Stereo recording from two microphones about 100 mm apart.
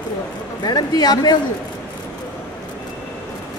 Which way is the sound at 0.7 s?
45° left (ahead or behind).